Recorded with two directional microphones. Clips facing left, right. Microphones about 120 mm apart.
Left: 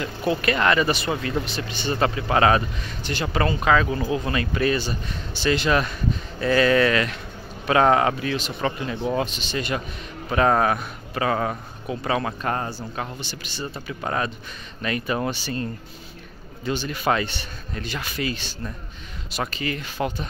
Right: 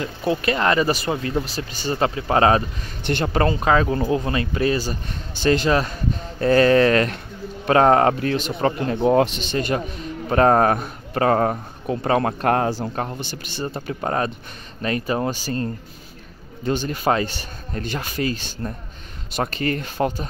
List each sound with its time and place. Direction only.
0.3 s speech: 25° right (ahead or behind)
2.0 s speech: 20° right (ahead or behind)
3.0 s speech: 55° right (ahead or behind)
3.3 s a man's voice: 35° right (ahead or behind); by 12.8 s 80° right
12.8 s a man's voice: 50° right (ahead or behind)